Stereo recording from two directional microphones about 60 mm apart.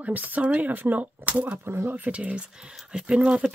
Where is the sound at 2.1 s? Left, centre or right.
Right.